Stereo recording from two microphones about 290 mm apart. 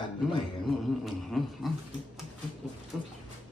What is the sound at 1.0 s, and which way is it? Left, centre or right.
Speech, centre.